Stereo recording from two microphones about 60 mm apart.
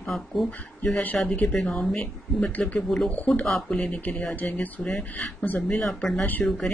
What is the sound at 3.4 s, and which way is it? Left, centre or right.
Speech, centre.